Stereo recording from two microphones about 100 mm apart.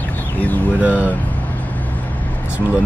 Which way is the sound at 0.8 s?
15° right (ahead or behind).